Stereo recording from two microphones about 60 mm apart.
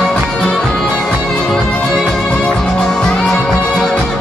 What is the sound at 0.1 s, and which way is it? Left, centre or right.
Music, centre.